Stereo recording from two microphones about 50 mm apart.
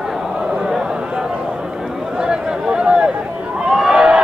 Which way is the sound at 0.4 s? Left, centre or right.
Centre.